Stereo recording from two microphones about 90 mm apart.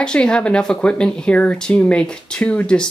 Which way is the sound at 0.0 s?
10° left (ahead or behind).